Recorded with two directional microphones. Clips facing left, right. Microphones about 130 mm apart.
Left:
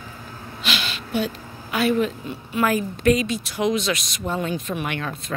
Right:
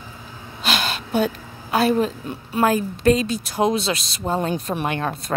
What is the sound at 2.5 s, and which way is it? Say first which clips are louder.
Speech: right 2 dB; 30° right (ahead or behind).